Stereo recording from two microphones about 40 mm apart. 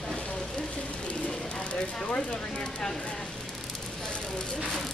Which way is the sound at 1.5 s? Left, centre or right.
Left.